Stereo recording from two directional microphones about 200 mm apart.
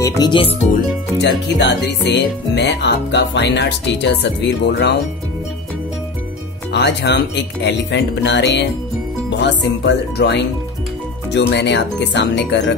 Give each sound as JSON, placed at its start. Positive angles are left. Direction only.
{"t": 0.0, "sound": "speech", "side_deg": 20}
{"t": 1.2, "sound": "speech", "side_deg": 60}
{"t": 6.7, "sound": "speech", "side_deg": 60}